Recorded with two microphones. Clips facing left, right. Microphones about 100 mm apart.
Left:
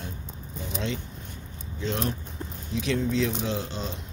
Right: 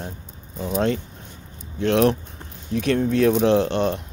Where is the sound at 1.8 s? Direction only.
80° right.